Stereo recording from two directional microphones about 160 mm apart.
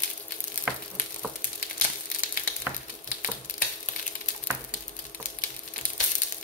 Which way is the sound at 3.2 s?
55° left (ahead or behind).